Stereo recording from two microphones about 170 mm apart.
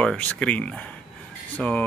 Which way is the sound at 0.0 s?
5° left (ahead or behind).